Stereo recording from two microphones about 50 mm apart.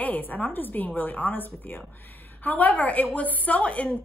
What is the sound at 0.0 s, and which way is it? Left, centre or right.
Speech, left.